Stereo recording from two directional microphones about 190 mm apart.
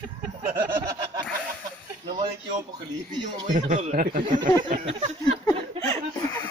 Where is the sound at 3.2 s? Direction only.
45° right (ahead or behind).